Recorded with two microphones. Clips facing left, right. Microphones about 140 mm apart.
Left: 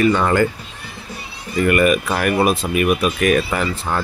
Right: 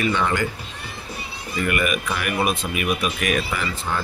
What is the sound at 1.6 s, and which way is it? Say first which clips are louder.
Speech: left 8 dB; 40° left (ahead or behind).